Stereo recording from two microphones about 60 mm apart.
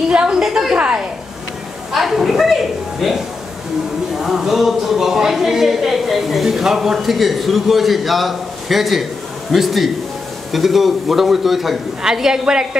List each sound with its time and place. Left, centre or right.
0.1 s a woman's voice: centre
1.9 s a woman's voice: centre
4.2 s a woman's voice: centre